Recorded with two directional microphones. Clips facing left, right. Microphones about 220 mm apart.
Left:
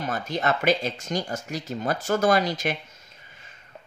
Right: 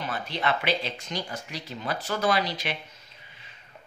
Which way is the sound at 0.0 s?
45° left (ahead or behind).